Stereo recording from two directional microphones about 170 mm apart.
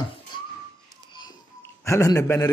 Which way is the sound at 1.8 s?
15° left (ahead or behind).